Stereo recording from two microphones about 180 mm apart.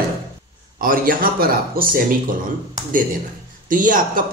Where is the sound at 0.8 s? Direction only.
50° right (ahead or behind).